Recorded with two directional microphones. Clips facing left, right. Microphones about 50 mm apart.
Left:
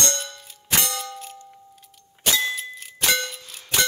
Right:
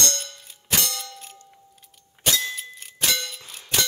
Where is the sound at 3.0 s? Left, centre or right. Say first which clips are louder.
Left 3 dB; left.